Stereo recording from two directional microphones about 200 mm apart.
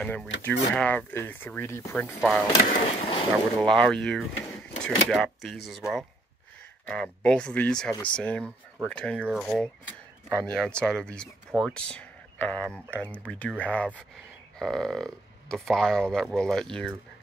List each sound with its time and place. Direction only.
0.0 s speech: 5° left (ahead or behind)
2.9 s speech: 30° left (ahead or behind)
3.6 s speech: 5° left (ahead or behind)